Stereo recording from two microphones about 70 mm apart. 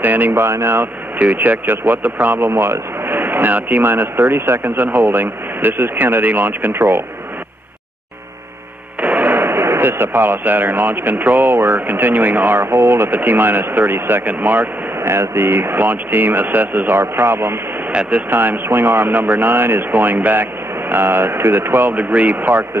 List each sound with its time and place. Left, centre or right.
0.0 s speech: right
1.2 s speech: right
9.0 s speech: right
15.0 s speech: right